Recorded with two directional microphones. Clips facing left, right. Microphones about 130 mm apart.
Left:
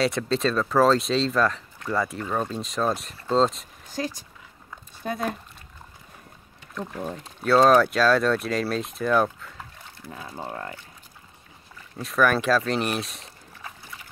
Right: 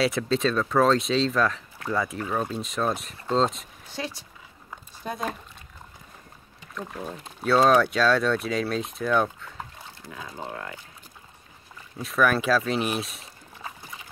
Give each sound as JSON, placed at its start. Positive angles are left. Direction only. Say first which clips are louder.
{"t": 0.0, "sound": "speech", "louder": "even", "side_deg": 0}
{"t": 3.9, "sound": "speech", "louder": "left 4 dB", "side_deg": 45}
{"t": 7.4, "sound": "speech", "louder": "left 2 dB", "side_deg": 0}
{"t": 10.5, "sound": "speech", "louder": "left 2 dB", "side_deg": 40}
{"t": 12.0, "sound": "speech", "louder": "left 1 dB", "side_deg": 0}